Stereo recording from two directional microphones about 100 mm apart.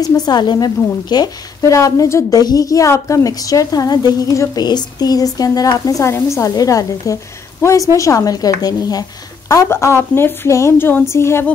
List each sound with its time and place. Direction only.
0.0 s a woman's voice: 40° left (ahead or behind)
9.7 s a woman's voice: 25° left (ahead or behind)